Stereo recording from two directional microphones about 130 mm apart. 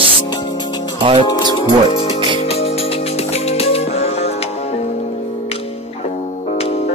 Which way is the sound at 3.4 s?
50° left (ahead or behind).